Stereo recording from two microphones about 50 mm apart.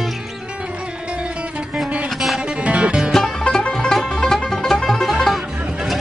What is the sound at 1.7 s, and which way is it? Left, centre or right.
Music, centre.